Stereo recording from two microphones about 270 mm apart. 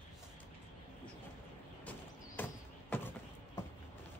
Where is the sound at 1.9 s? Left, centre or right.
Centre.